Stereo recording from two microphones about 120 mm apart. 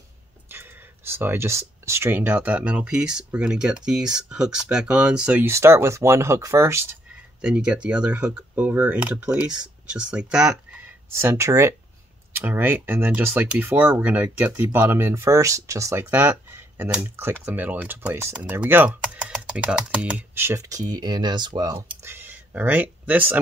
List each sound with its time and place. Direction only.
0.5 s speech: 20° right (ahead or behind)
5.4 s speech: 20° right (ahead or behind)
7.4 s speech: 5° right (ahead or behind)
11.1 s speech: 20° right (ahead or behind)
22.0 s speech: 15° right (ahead or behind)